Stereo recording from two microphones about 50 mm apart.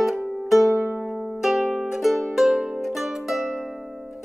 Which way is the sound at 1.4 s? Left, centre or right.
Centre.